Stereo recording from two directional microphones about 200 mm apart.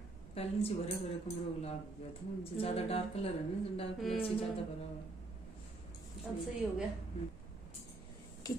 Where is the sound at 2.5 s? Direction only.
30° left (ahead or behind).